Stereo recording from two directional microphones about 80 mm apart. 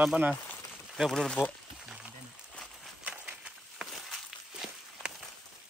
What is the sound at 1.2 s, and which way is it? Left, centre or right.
Speech, centre.